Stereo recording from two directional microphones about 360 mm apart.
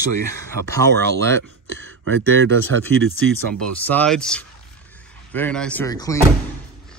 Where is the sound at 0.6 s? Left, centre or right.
Right.